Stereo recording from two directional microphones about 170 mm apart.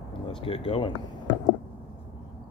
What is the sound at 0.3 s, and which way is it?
Speech, 30° left (ahead or behind).